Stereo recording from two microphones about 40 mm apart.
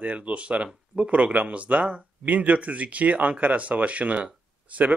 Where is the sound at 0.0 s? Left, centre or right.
Right.